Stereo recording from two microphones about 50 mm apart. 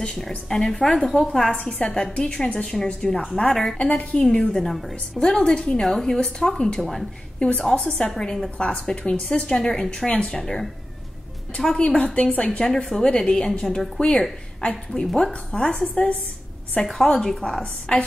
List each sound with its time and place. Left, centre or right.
0.5 s a woman's voice: centre
1.8 s speech: centre
3.7 s speech: centre
4.5 s a woman's voice: centre
5.2 s speech: centre
7.3 s a woman's voice: left
10.4 s speech: centre
12.0 s a woman's voice: left
12.4 s a woman's voice: centre
15.0 s a woman's voice: centre
15.9 s a woman's voice: left
16.8 s speech: centre